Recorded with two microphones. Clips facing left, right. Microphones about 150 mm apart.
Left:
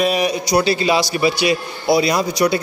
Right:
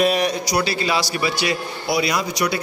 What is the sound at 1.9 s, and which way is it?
Speech, 30° left (ahead or behind).